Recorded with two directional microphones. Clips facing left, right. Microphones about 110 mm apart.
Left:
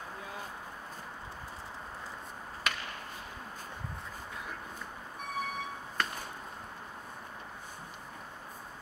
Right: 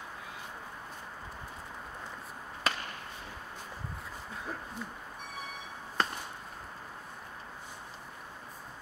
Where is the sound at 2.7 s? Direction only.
35° right (ahead or behind).